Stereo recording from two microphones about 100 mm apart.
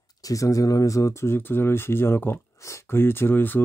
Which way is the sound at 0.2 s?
35° left (ahead or behind).